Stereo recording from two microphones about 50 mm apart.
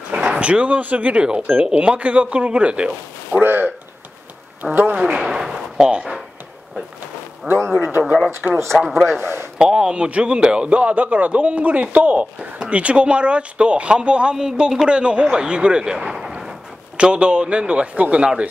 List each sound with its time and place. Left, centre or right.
0.1 s a sound: centre
0.4 s a man's voice: right
3.3 s a sound: right
4.6 s speech: centre
5.0 s a sound: centre
7.5 s a man's voice: centre
8.4 s a man's voice: centre
9.2 s speech: right
9.6 s a man's voice: centre
16.9 s a man's voice: right